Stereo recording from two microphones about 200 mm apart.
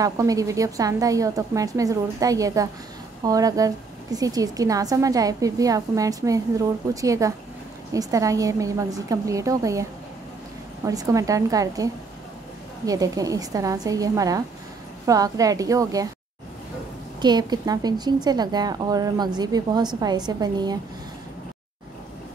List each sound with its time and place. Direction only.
0.0 s a woman's voice: 15° right (ahead or behind)
10.9 s a woman's voice: 15° right (ahead or behind)
17.2 s a woman's voice: 20° right (ahead or behind)